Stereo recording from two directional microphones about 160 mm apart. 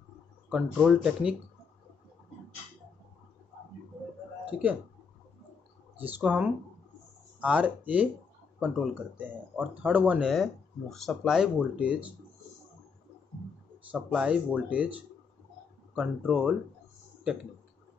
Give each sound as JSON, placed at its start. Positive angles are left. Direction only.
{"t": 0.5, "sound": "speech", "side_deg": -5}
{"t": 4.5, "sound": "speech", "side_deg": -10}
{"t": 5.9, "sound": "speech", "side_deg": -10}
{"t": 13.9, "sound": "speech", "side_deg": -5}